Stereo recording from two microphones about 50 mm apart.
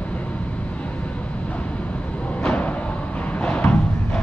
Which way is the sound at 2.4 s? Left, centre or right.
Left.